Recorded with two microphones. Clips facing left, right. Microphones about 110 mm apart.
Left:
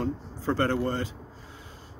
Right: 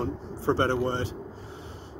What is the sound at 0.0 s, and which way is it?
Speech, 25° right (ahead or behind).